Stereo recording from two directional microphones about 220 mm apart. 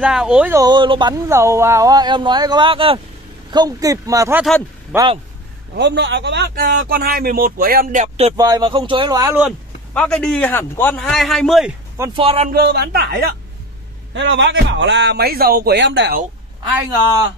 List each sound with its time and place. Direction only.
0.0 s speech: 5° right (ahead or behind); by 5.2 s 20° right (ahead or behind)
5.8 s speech: 55° right (ahead or behind); by 8.4 s 30° right (ahead or behind)
8.4 s speech: 20° right (ahead or behind)
9.9 s a man's voice: 5° left (ahead or behind)
12.2 s speech: 25° right (ahead or behind)
12.5 s speech: 50° right (ahead or behind)
14.1 s speech: 55° right (ahead or behind)